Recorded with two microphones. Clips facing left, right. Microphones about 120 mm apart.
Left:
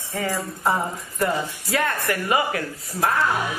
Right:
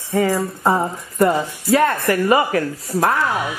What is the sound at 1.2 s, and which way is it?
A woman's voice, 40° right (ahead or behind).